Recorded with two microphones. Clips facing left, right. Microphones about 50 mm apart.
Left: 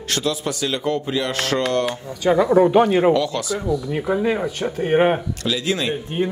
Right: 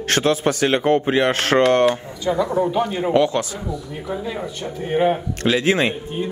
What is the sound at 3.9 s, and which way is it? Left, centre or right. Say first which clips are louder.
Speech: left 7 dB; left.